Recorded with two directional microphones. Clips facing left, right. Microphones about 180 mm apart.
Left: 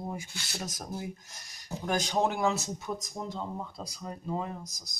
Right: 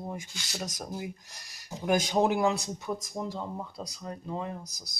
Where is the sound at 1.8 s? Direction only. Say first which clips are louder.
Right 3 dB; 10° right (ahead or behind).